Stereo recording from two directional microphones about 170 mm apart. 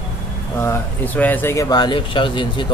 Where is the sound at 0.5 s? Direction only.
15° left (ahead or behind).